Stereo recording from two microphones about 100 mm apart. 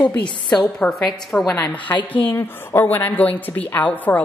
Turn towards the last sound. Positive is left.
turn(degrees=15)  # may be behind; listen again after turning